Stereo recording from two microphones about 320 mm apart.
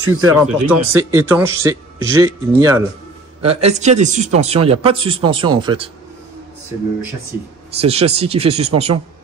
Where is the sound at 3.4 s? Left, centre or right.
Centre.